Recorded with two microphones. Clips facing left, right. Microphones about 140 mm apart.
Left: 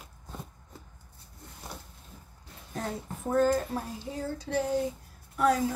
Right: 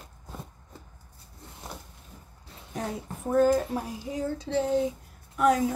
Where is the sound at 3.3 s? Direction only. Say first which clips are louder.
Right 3 dB; 10° right (ahead or behind).